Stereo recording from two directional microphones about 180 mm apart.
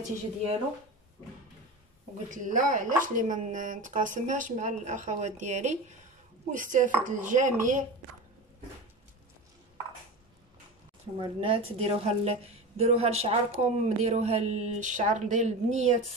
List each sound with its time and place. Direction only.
2.2 s speech: 45° right (ahead or behind)
11.1 s a woman's voice: 30° right (ahead or behind)